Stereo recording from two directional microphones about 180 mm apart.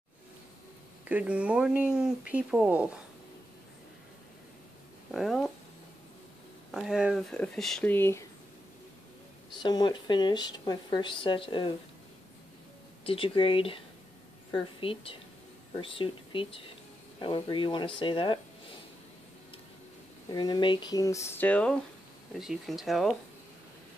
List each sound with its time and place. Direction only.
1.0 s speech: 5° right (ahead or behind)
5.1 s speech: centre (ahead or behind)
6.7 s speech: centre (ahead or behind)
9.6 s speech: 25° left (ahead or behind)
13.0 s speech: 30° left (ahead or behind)
20.2 s speech: 25° left (ahead or behind); by 23.1 s centre (ahead or behind)